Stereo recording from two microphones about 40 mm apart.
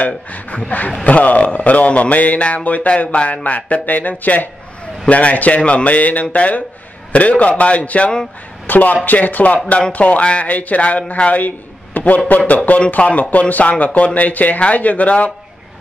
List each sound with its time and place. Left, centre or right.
0.0 s a man's voice: left
8.6 s a man's voice: left